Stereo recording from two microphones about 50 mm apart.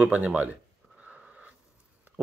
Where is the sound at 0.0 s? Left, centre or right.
Right.